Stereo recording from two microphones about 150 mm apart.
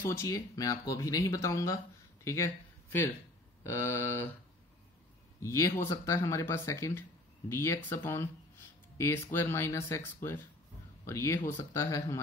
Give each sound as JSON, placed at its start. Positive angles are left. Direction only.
{"t": 0.1, "sound": "speech", "side_deg": 20}
{"t": 2.2, "sound": "a sound", "side_deg": 20}
{"t": 3.6, "sound": "speech", "side_deg": 15}
{"t": 5.4, "sound": "speech", "side_deg": 20}